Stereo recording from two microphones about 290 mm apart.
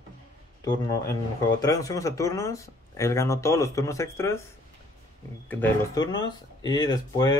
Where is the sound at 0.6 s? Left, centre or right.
Centre.